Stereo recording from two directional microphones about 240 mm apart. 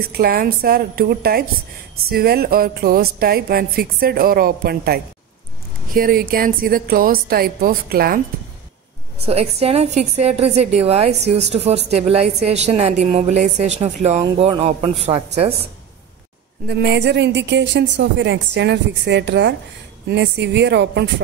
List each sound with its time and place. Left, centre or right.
0.1 s speech: right
9.2 s a woman's voice: right
16.6 s a woman's voice: right